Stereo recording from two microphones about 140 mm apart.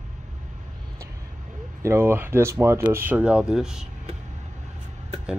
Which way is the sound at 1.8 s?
20° right (ahead or behind).